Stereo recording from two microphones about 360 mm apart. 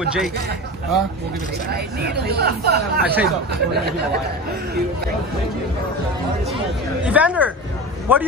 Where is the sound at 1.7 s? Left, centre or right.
Right.